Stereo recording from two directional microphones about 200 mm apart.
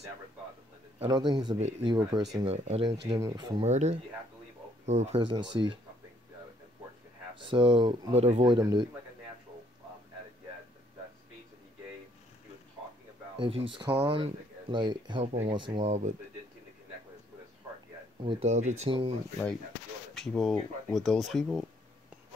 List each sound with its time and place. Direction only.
0.9 s speech: 25° right (ahead or behind)
2.3 s speech: 30° right (ahead or behind)
3.1 s speech: 20° right (ahead or behind)
3.6 s speech: 35° right (ahead or behind)
7.3 s speech: 25° right (ahead or behind)
13.4 s speech: 30° right (ahead or behind)
15.8 s speech: 35° right (ahead or behind)
18.2 s speech: 30° right (ahead or behind)
20.2 s speech: centre (ahead or behind)